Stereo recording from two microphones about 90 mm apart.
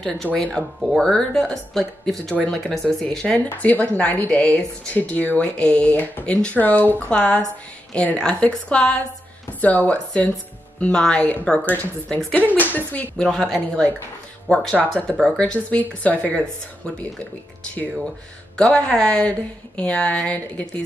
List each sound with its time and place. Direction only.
0.0 s speech: 10° left (ahead or behind)
3.3 s speech: 20° left (ahead or behind)
13.2 s speech: 5° left (ahead or behind)
18.6 s speech: 5° left (ahead or behind)